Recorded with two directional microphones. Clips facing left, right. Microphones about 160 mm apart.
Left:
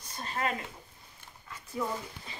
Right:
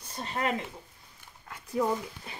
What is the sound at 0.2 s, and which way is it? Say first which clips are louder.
Speech: right 2 dB; 25° right (ahead or behind).